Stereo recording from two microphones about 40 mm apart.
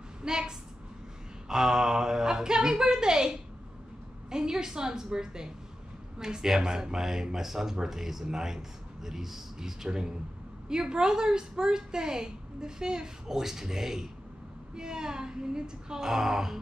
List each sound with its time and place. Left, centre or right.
0.2 s a woman's voice: centre